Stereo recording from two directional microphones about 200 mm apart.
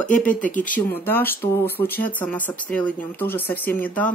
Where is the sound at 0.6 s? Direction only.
10° left (ahead or behind).